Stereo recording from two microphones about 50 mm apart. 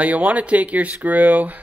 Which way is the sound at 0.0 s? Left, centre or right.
Right.